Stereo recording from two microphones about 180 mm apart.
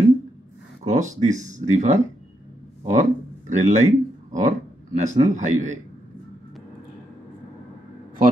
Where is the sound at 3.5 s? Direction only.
40° right (ahead or behind).